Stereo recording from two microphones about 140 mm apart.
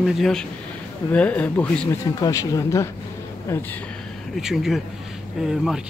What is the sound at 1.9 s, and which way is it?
Speech, 25° left (ahead or behind).